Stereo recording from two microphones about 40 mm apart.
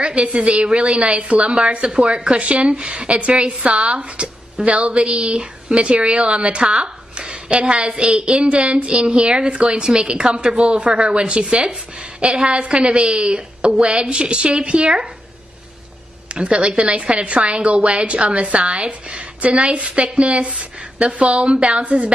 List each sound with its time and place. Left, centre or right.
0.0 s a woman's voice: right
2.0 s a woman's voice: right
16.3 s a woman's voice: right